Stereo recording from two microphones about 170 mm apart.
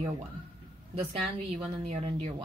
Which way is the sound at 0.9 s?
40° right (ahead or behind).